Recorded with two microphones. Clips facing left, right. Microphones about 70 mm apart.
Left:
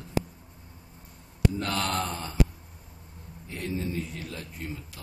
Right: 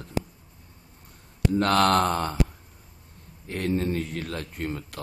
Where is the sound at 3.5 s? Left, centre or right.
Right.